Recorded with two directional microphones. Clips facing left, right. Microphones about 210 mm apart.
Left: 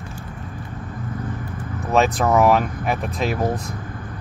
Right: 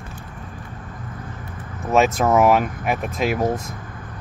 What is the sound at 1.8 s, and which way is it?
Speech, centre (ahead or behind).